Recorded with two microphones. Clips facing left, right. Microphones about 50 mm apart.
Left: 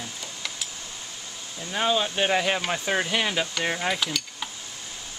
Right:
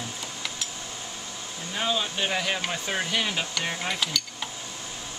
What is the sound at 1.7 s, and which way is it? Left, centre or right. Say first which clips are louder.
Speech: left 4 dB; centre.